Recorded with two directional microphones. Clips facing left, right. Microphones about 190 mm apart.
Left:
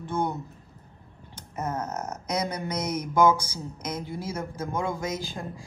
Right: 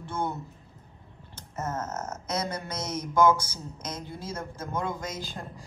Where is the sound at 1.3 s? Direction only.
15° left (ahead or behind).